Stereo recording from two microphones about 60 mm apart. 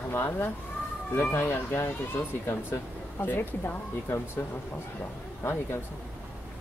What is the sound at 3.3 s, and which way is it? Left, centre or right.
Speech, left.